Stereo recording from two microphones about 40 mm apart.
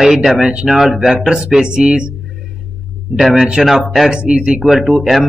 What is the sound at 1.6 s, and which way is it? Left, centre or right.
Speech, right.